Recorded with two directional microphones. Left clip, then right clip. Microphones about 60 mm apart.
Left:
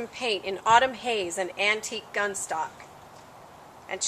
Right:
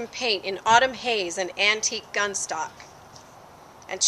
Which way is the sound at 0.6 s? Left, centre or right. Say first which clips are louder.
Right 1 dB; right.